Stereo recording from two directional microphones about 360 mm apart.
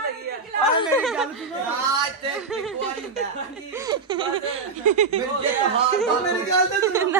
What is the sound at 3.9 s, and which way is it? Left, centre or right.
Speech, centre.